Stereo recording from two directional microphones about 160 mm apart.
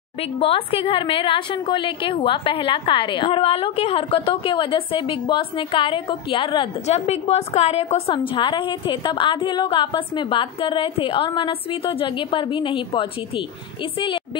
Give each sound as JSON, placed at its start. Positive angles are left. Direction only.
{"t": 0.2, "sound": "a woman's voice", "side_deg": 35}